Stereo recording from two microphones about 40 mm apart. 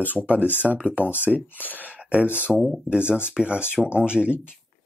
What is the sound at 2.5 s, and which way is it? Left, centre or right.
Speech, centre.